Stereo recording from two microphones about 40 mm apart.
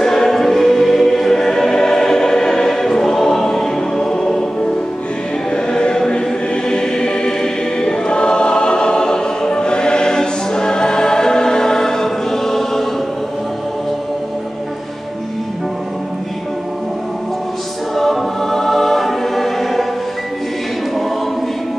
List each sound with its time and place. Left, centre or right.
0.0 s choir: centre
5.5 s choir: left
17.9 s choir: centre